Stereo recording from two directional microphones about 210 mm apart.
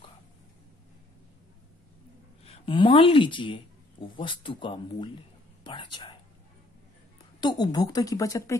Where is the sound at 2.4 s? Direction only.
25° left (ahead or behind).